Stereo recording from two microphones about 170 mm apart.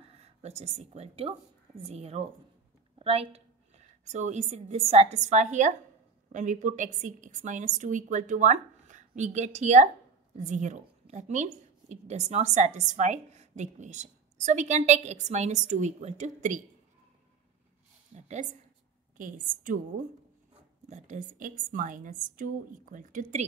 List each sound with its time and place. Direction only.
0.2 s a woman's voice: 40° right (ahead or behind)
18.1 s a woman's voice: 45° right (ahead or behind)
20.9 s a woman's voice: 50° right (ahead or behind)